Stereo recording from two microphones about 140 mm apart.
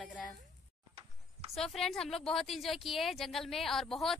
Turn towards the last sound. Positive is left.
turn(degrees=0)  # may be behind; listen again after turning